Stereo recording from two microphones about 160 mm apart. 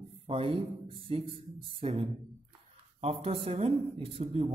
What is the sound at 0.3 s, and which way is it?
Speech, 35° right (ahead or behind).